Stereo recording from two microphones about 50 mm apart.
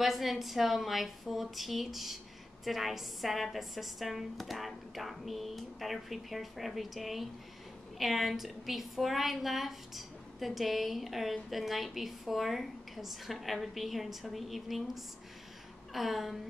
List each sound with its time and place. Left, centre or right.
0.0 s a woman's voice: centre
15.9 s a woman's voice: centre